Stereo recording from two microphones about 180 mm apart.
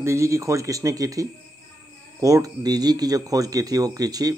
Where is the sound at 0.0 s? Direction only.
15° right (ahead or behind).